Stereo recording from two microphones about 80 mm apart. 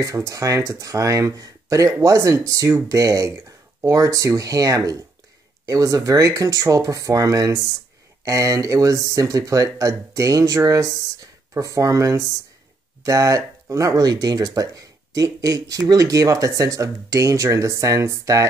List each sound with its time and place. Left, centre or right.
0.0 s speech: right